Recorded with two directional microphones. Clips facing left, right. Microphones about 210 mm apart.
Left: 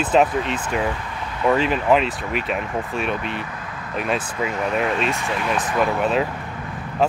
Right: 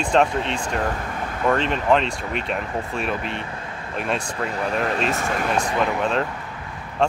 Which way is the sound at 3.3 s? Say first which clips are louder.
Left 1 dB; 30° right (ahead or behind).